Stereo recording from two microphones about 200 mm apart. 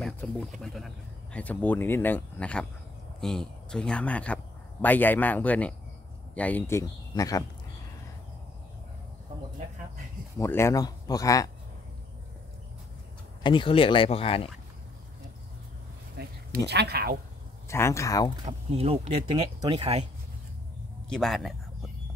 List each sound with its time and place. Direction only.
0.2 s speech: 5° left (ahead or behind)
10.4 s speech: 15° left (ahead or behind)
13.4 s speech: 25° left (ahead or behind)
16.2 s speech: 55° right (ahead or behind)
17.6 s speech: 15° left (ahead or behind)
18.4 s speech: 30° right (ahead or behind)
21.1 s speech: centre (ahead or behind)